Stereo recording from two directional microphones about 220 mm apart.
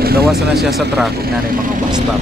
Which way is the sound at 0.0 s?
45° right (ahead or behind).